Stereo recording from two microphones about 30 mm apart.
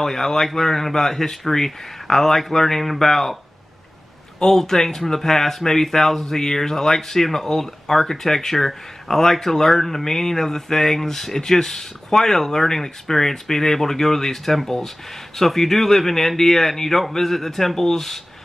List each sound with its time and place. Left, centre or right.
0.0 s speech: centre
4.4 s speech: centre